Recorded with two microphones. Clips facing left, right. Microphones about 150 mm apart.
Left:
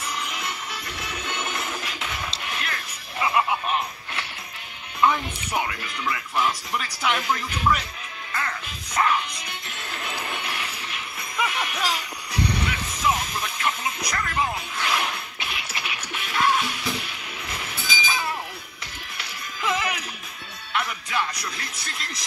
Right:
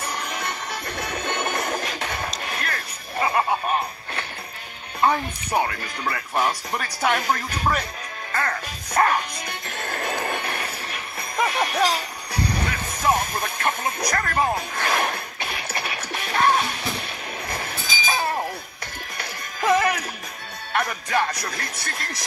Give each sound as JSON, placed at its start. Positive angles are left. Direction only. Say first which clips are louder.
{"t": 0.0, "sound": "music", "louder": "right 2 dB", "side_deg": -40}
{"t": 5.0, "sound": "speech", "louder": "right 1 dB", "side_deg": -40}
{"t": 8.3, "sound": "music", "louder": "right 4 dB", "side_deg": -50}
{"t": 17.5, "sound": "chink", "louder": "even", "side_deg": -45}
{"t": 19.1, "sound": "music", "louder": "right 2 dB", "side_deg": -45}
{"t": 20.7, "sound": "speech", "louder": "right 4 dB", "side_deg": -50}